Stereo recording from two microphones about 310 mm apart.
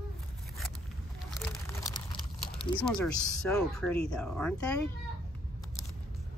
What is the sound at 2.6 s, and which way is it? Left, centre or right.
Speech, centre.